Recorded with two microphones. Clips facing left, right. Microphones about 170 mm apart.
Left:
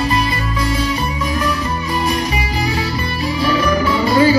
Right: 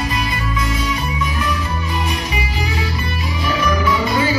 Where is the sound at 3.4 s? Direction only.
35° left (ahead or behind).